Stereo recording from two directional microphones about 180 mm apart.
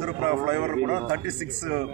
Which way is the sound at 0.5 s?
35° right (ahead or behind).